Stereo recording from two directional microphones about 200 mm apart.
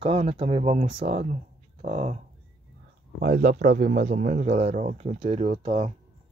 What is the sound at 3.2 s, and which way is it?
Speech, 40° right (ahead or behind).